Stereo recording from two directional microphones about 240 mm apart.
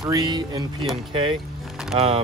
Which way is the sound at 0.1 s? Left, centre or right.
Centre.